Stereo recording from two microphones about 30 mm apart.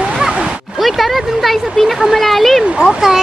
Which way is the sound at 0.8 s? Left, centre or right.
Centre.